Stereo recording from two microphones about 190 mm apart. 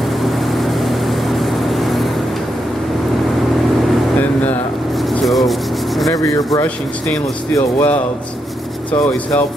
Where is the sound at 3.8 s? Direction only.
Centre (ahead or behind).